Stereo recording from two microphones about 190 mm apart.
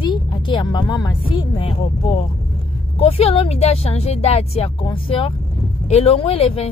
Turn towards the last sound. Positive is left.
turn(degrees=30)  # may be behind; listen again after turning